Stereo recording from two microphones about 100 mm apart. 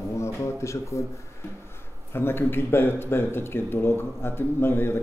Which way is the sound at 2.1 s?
25° left (ahead or behind).